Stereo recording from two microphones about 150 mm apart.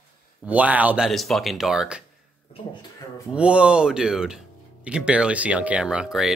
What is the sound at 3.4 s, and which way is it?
Speech, 5° right (ahead or behind).